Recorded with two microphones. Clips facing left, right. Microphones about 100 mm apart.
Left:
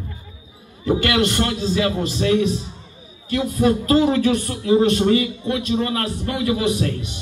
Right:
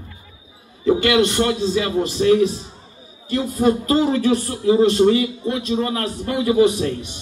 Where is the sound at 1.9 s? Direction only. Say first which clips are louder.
Right 4 dB; 35° right (ahead or behind).